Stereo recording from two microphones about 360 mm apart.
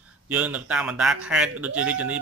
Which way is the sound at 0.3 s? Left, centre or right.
Centre.